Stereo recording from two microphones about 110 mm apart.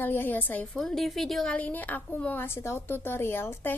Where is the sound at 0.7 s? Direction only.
5° left (ahead or behind).